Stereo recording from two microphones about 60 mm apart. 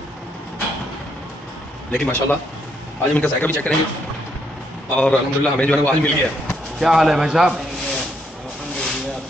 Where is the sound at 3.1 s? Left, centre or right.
Left.